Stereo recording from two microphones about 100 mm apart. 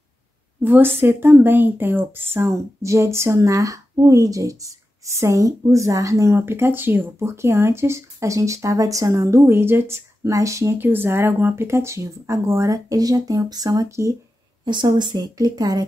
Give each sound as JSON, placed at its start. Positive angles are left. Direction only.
{"t": 0.7, "sound": "a woman's voice", "side_deg": -20}
{"t": 14.6, "sound": "a woman's voice", "side_deg": -50}